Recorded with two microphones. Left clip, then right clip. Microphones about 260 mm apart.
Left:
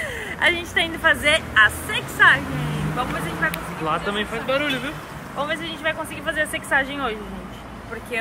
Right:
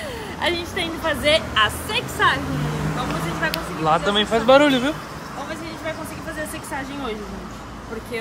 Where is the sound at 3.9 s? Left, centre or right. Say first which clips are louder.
Right 5 dB; centre.